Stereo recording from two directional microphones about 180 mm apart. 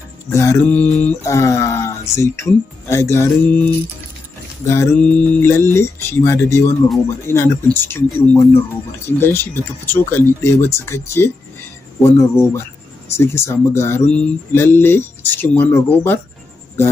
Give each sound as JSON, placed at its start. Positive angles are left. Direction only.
{"t": 0.3, "sound": "mantra", "side_deg": 15}
{"t": 4.6, "sound": "mantra", "side_deg": 10}